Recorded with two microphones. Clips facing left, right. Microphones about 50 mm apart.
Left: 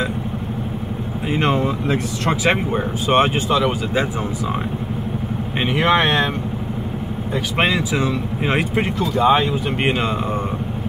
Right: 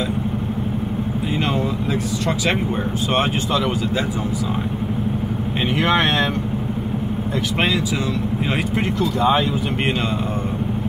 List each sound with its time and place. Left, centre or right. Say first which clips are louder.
5.8 s speech: left 2 dB; centre
8.5 s speech: left 6 dB; centre
9.0 s speech: left 2 dB; centre